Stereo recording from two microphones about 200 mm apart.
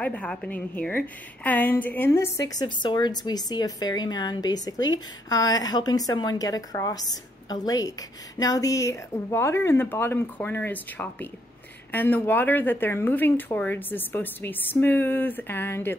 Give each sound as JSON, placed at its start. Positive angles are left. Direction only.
{"t": 0.0, "sound": "a woman's voice", "side_deg": 5}